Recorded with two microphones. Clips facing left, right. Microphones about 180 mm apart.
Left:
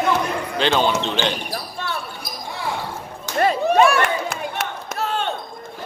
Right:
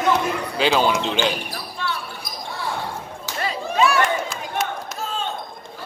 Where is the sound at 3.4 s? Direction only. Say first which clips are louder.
Left 6 dB; 55° left (ahead or behind).